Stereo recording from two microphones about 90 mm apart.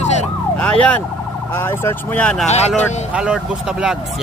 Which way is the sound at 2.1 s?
10° left (ahead or behind).